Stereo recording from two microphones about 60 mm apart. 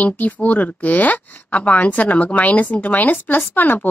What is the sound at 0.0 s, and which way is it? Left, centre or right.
Speech, left.